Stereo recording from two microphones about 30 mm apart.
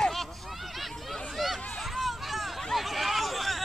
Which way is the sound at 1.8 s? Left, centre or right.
Centre.